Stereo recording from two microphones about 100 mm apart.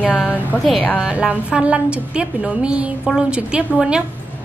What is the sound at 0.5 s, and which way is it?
Speech, 20° left (ahead or behind).